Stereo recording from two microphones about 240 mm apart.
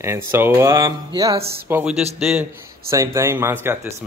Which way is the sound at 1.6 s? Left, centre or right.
Centre.